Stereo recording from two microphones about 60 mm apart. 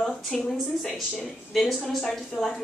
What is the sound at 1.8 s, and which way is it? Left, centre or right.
Speech, centre.